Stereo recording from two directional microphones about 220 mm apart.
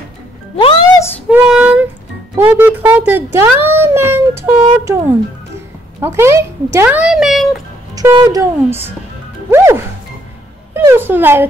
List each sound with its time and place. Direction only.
0.6 s music: 25° left (ahead or behind)
1.3 s child singing: 5° right (ahead or behind)
2.3 s speech: 10° right (ahead or behind)
7.9 s speech: 15° right (ahead or behind)